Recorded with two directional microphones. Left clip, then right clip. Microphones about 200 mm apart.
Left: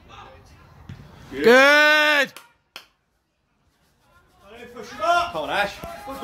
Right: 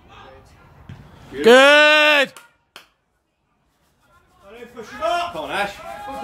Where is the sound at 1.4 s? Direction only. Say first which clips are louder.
Right 3 dB; 15° right (ahead or behind).